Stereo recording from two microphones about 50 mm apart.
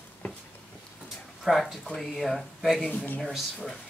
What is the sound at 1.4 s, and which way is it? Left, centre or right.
Speech, centre.